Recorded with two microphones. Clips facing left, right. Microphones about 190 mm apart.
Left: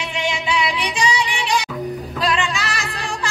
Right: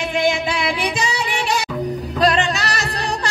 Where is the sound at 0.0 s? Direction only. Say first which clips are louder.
Right 6 dB; 45° right (ahead or behind).